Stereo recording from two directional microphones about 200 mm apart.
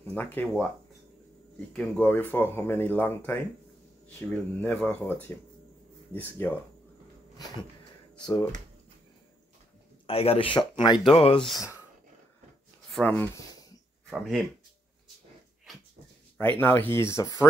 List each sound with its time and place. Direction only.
0.1 s speech: 10° left (ahead or behind)
1.8 s speech: 10° left (ahead or behind)
10.0 s speech: 30° left (ahead or behind)
12.9 s speech: 10° left (ahead or behind)
14.1 s speech: centre (ahead or behind)
16.3 s speech: 10° left (ahead or behind)